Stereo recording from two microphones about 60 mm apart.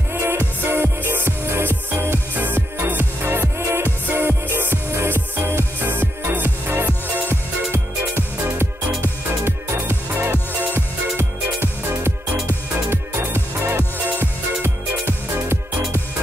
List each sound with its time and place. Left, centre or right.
0.1 s music: right
9.4 s music: right